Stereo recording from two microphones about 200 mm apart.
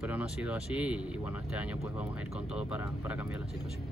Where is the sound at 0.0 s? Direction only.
5° right (ahead or behind).